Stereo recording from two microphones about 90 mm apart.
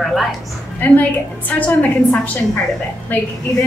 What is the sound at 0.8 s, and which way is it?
Speech, 20° left (ahead or behind).